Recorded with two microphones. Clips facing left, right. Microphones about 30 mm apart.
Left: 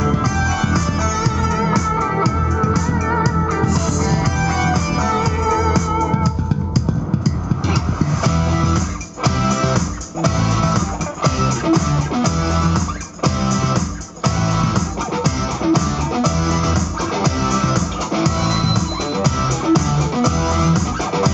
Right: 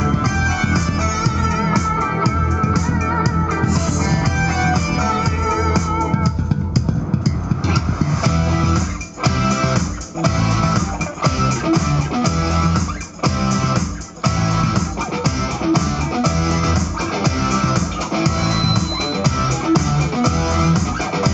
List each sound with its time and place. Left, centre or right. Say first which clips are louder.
0.2 s music: even; right
7.6 s music: even; right